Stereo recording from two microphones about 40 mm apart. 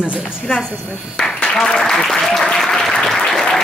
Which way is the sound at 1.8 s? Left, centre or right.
Centre.